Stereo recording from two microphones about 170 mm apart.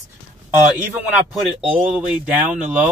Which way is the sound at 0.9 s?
5° right (ahead or behind).